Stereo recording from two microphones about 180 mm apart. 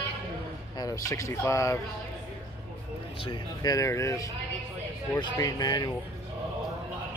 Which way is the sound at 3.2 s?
20° left (ahead or behind).